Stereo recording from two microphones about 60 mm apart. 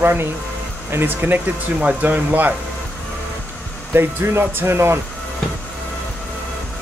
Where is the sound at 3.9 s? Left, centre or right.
Right.